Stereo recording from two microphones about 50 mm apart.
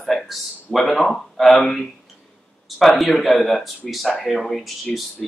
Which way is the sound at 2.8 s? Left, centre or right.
Centre.